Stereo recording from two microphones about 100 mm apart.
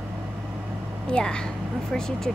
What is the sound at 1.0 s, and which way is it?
A woman's voice, 10° left (ahead or behind).